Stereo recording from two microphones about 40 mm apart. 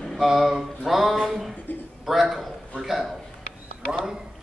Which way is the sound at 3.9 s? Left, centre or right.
Centre.